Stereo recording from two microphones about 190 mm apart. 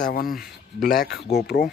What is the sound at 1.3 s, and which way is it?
Speech, 40° left (ahead or behind).